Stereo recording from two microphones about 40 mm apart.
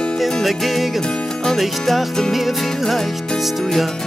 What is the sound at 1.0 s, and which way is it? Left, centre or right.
Music, centre.